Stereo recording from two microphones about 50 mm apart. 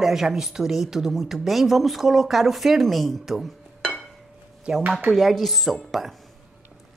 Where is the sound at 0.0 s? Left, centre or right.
Centre.